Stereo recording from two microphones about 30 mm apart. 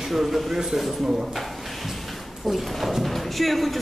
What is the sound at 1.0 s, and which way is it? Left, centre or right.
Speech, centre.